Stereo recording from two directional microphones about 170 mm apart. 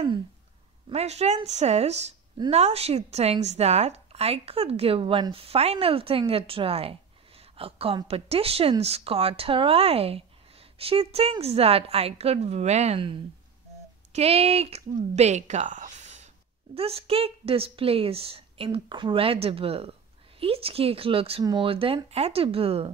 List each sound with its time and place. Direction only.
0.8 s speech: 40° right (ahead or behind)
2.3 s speech: 25° right (ahead or behind)